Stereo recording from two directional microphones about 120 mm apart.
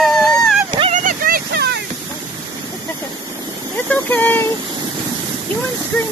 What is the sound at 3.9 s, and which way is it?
Speech, 15° left (ahead or behind).